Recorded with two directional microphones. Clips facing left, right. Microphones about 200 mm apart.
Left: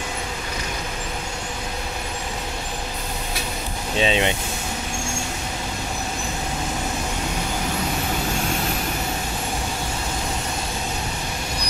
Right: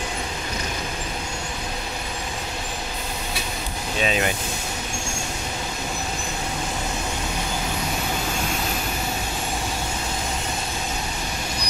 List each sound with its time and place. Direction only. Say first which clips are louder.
4.0 s speech: left 3 dB; 25° left (ahead or behind)